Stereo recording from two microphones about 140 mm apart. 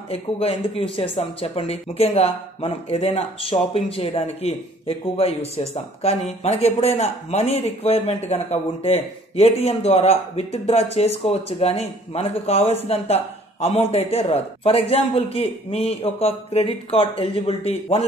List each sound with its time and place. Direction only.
0.1 s speech: 45° left (ahead or behind)